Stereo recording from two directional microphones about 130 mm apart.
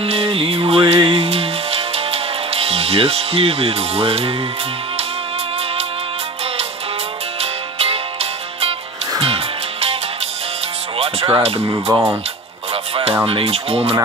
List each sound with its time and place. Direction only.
0.0 s music: 45° right (ahead or behind)
7.3 s music: 50° right (ahead or behind)
11.0 s speech: 45° right (ahead or behind)
11.9 s speech: 20° right (ahead or behind)
13.3 s speech: 50° right (ahead or behind)